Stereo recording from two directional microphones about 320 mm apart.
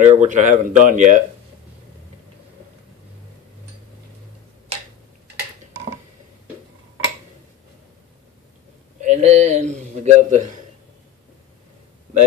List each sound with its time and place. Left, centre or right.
0.1 s a man's voice: right
9.0 s a man's voice: right